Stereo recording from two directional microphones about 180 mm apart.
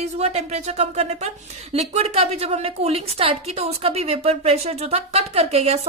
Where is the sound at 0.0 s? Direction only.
35° right (ahead or behind).